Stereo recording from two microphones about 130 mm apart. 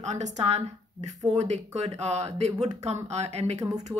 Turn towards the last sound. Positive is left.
turn(degrees=-55)  # may be behind; listen again after turning